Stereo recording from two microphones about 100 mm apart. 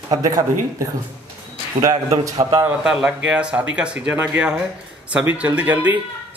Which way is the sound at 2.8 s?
5° right (ahead or behind).